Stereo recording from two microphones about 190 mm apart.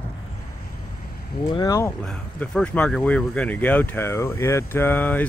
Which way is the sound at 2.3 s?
5° left (ahead or behind).